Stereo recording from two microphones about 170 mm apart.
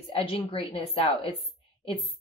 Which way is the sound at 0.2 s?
30° left (ahead or behind).